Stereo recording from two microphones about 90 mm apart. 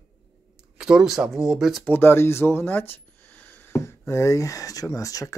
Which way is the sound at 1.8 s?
25° left (ahead or behind).